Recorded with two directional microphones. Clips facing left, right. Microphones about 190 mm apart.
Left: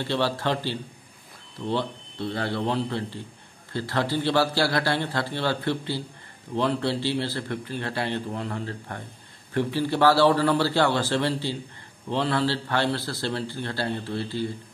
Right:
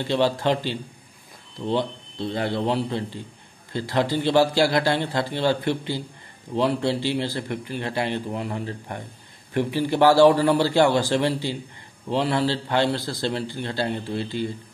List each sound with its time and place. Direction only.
0.0 s speech: 15° right (ahead or behind)